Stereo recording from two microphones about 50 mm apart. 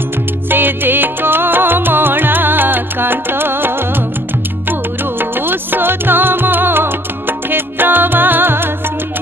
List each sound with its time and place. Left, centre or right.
0.5 s music: right
5.2 s music: right